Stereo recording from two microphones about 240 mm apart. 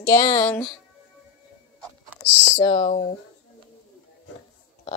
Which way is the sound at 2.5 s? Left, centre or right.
Centre.